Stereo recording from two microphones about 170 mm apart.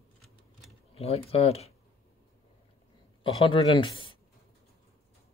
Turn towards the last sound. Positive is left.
turn(degrees=30)  # may be behind; listen again after turning